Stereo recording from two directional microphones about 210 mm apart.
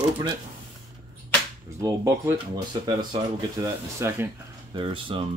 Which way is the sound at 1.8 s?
15° right (ahead or behind).